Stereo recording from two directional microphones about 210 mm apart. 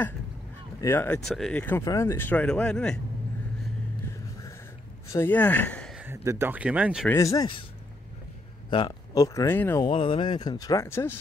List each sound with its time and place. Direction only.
0.7 s speech: 10° left (ahead or behind)
5.1 s speech: 10° left (ahead or behind)
6.0 s speech: 10° right (ahead or behind)
7.1 s speech: 15° left (ahead or behind)
8.6 s speech: 20° left (ahead or behind)
9.8 s speech: 25° left (ahead or behind)